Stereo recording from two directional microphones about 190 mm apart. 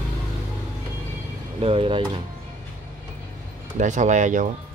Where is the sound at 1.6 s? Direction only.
30° right (ahead or behind).